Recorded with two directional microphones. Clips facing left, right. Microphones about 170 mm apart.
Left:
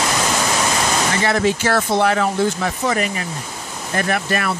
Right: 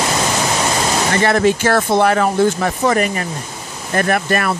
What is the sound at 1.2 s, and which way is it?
Speech, 55° right (ahead or behind).